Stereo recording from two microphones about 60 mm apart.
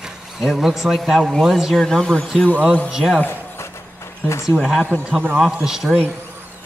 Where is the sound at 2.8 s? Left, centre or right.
Centre.